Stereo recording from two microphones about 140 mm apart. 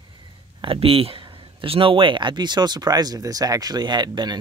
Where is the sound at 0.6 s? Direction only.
40° right (ahead or behind).